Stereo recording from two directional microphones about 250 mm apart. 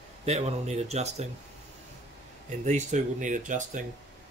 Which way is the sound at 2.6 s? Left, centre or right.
Right.